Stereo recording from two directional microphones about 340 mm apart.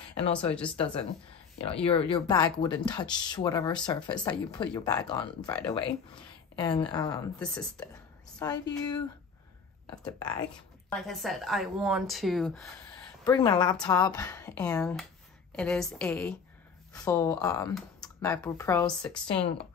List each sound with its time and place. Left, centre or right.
1.7 s speech: centre
10.0 s speech: centre
13.2 s speech: centre
19.2 s speech: centre